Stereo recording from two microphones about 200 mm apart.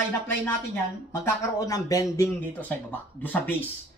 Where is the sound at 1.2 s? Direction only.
15° left (ahead or behind).